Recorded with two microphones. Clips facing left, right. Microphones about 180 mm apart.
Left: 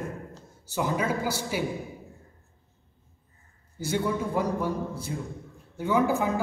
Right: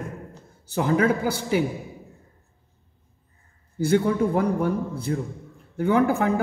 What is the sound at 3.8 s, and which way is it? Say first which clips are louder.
A man's voice: right 7 dB; 60° right (ahead or behind).